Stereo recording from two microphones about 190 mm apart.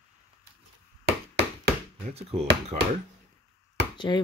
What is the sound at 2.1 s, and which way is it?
Speech, 35° right (ahead or behind).